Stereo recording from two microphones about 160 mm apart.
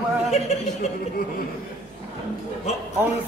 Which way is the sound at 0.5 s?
45° left (ahead or behind).